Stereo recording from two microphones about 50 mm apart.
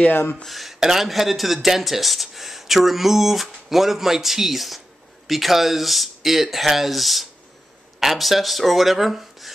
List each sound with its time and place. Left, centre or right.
0.1 s speech: left
0.5 s speech: centre